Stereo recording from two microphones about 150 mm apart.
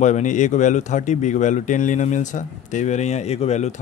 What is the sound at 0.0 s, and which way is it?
A man's voice, 55° left (ahead or behind).